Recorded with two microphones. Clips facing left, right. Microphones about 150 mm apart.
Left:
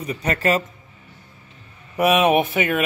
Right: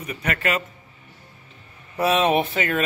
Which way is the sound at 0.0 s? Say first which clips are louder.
Left 4 dB; 35° left (ahead or behind).